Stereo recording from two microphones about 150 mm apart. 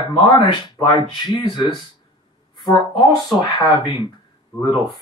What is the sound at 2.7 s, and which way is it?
Speech, 30° left (ahead or behind).